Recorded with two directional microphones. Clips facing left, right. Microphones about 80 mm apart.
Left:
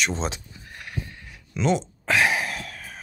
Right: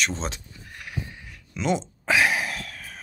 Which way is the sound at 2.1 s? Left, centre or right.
Centre.